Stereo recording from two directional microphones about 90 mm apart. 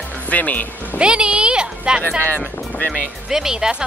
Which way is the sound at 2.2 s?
15° left (ahead or behind).